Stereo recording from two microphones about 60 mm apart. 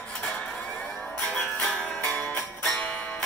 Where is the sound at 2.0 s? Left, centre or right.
Left.